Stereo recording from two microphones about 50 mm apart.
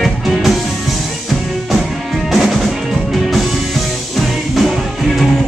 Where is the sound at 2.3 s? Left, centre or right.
Centre.